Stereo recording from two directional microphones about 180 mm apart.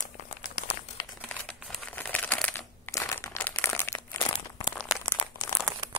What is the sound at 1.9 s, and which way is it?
Crumpling, 10° left (ahead or behind).